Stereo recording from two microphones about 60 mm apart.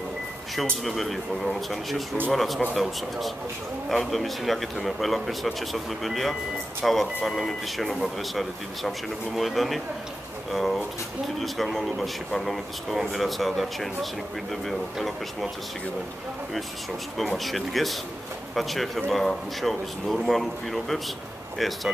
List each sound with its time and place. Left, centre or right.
0.8 s speech: centre
17.2 s speech: centre